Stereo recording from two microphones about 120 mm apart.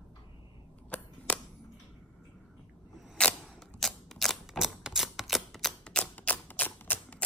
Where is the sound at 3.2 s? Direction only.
10° left (ahead or behind).